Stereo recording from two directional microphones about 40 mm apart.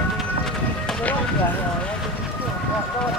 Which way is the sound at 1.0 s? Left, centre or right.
Left.